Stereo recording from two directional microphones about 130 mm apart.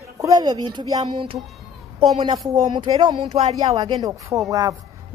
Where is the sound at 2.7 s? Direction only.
35° right (ahead or behind).